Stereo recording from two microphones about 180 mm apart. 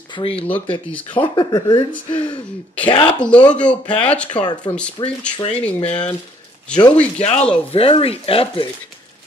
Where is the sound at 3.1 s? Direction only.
5° left (ahead or behind).